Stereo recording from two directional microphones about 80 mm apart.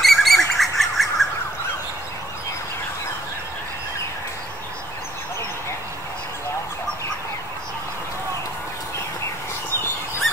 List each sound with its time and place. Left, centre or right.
0.0 s bird: centre